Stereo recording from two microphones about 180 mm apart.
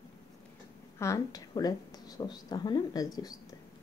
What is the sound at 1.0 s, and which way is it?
A woman's voice, 20° left (ahead or behind).